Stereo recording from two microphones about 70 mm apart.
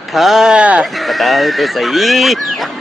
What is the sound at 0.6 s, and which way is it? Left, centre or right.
Speech, centre.